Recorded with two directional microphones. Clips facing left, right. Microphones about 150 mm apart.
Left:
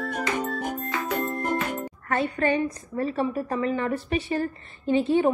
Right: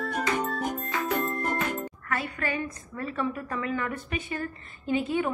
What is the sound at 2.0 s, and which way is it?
A woman's voice, 25° left (ahead or behind).